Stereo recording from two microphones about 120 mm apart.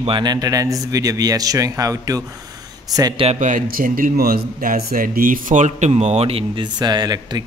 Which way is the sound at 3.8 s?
90° right.